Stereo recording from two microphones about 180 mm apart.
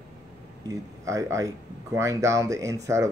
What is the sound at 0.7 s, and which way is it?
Speech, 15° right (ahead or behind).